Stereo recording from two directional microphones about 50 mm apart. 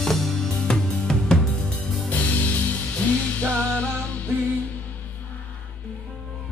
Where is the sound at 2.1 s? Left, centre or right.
Left.